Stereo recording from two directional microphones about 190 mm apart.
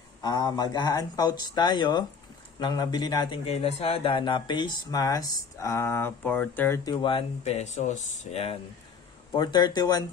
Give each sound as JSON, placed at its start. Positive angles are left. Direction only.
{"t": 0.2, "sound": "speech", "side_deg": 20}
{"t": 3.4, "sound": "speech", "side_deg": 35}
{"t": 9.3, "sound": "speech", "side_deg": 25}